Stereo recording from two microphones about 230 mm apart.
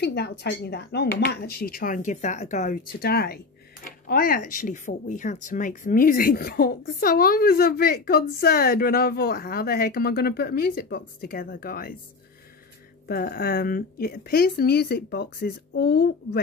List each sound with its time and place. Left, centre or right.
0.0 s speech: left
13.1 s speech: left